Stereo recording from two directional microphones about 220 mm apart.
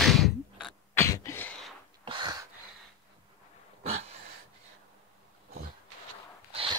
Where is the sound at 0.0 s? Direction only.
Centre (ahead or behind).